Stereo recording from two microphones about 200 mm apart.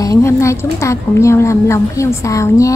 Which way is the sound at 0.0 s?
15° left (ahead or behind).